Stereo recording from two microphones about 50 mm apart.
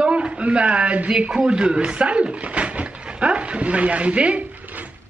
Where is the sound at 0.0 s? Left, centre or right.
Right.